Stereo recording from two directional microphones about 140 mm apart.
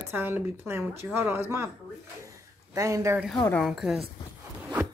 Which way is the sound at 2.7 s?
25° right (ahead or behind).